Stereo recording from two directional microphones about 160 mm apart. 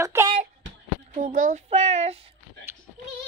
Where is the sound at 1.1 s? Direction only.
55° right (ahead or behind).